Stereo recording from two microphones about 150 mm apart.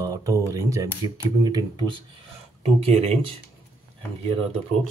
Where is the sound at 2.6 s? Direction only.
45° right (ahead or behind).